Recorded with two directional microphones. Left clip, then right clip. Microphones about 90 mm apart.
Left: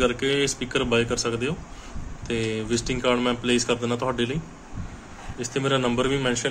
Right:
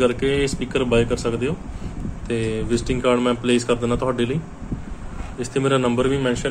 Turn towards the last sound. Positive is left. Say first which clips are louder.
# right 3 dB
turn(degrees=30)  # may be behind; listen again after turning